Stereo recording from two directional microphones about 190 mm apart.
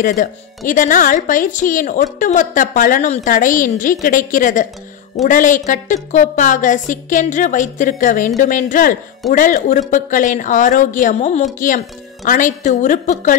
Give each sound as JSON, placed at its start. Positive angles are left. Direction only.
{"t": 0.0, "sound": "a woman's voice", "side_deg": 45}